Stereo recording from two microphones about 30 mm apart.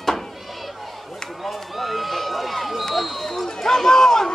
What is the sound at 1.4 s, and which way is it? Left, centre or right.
Run, centre.